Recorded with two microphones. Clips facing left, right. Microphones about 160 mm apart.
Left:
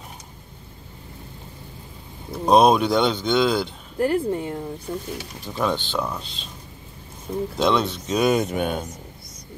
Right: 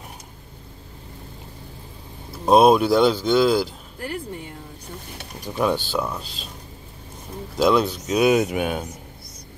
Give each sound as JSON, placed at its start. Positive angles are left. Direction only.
{"t": 2.4, "sound": "speech", "side_deg": -5}
{"t": 4.0, "sound": "speech", "side_deg": 45}
{"t": 5.4, "sound": "speech", "side_deg": -10}
{"t": 7.5, "sound": "speech", "side_deg": -5}